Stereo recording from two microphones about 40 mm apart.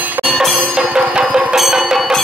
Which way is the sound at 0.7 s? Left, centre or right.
Right.